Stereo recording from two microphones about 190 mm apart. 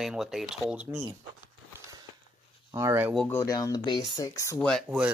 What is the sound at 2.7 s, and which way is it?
Speech, 15° right (ahead or behind).